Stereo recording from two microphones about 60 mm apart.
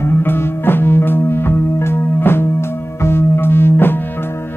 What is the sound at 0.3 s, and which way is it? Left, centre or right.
Music, left.